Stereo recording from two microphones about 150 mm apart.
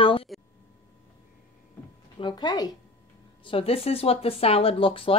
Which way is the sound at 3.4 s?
40° left (ahead or behind).